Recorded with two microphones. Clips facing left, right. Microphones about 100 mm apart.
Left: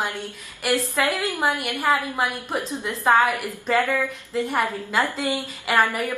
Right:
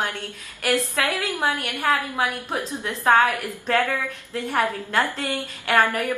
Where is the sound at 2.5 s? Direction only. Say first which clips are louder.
Left 1 dB; 15° left (ahead or behind).